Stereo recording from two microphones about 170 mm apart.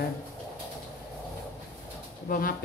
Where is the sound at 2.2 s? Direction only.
55° left (ahead or behind).